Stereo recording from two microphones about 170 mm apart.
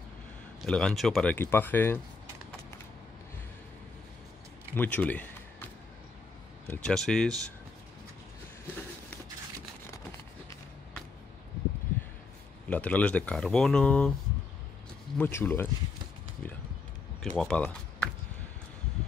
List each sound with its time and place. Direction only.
0.6 s speech: 5° left (ahead or behind)
4.7 s a sound: 10° left (ahead or behind)
6.7 s speech: 5° left (ahead or behind)
12.6 s speech: 10° left (ahead or behind)
15.1 s speech: 10° left (ahead or behind)
17.2 s speech: 5° left (ahead or behind)